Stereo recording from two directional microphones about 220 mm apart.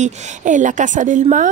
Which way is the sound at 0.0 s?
35° right (ahead or behind).